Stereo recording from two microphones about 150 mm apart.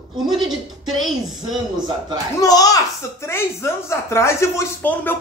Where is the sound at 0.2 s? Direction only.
Centre (ahead or behind).